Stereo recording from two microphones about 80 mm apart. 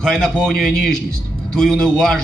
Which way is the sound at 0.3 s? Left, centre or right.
Centre.